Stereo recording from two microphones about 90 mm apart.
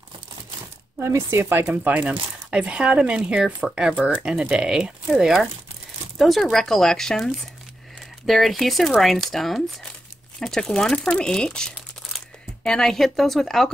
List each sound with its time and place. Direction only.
0.9 s speech: 30° right (ahead or behind); by 7.2 s 5° left (ahead or behind)
8.3 s speech: centre (ahead or behind)